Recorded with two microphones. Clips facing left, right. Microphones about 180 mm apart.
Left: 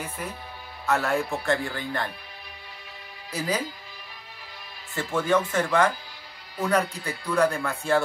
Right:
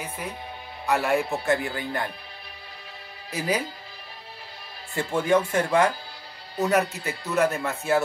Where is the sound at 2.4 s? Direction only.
30° right (ahead or behind).